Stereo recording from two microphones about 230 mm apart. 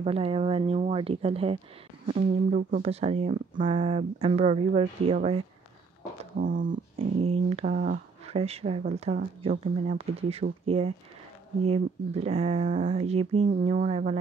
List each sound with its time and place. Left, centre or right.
0.0 s speech: right
6.3 s speech: right